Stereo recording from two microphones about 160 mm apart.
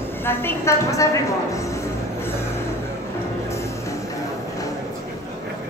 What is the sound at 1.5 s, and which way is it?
Music, 20° left (ahead or behind).